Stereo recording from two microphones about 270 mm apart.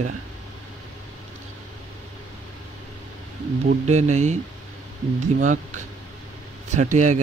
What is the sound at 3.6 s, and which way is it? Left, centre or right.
Speech, right.